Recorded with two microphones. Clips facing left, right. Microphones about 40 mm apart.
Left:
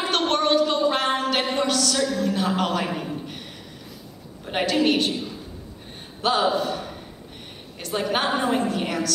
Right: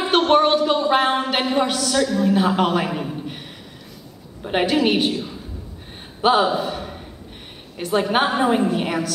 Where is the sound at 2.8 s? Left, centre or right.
Centre.